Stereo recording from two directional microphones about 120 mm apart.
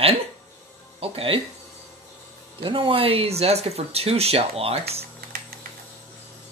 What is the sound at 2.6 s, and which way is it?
Speech, 45° right (ahead or behind).